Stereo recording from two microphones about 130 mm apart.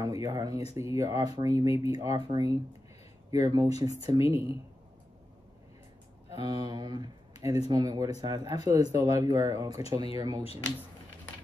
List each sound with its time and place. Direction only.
0.0 s speech: 25° right (ahead or behind)
6.4 s speech: 35° right (ahead or behind)